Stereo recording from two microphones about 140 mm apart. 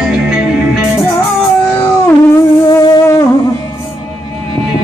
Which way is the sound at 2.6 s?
30° left (ahead or behind).